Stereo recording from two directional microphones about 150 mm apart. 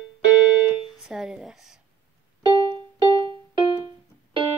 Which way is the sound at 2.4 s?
30° right (ahead or behind).